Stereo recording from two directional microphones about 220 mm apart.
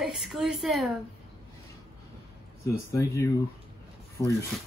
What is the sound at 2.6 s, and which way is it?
Speech, 15° left (ahead or behind).